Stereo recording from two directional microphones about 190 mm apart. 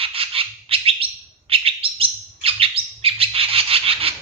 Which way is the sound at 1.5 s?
30° right (ahead or behind).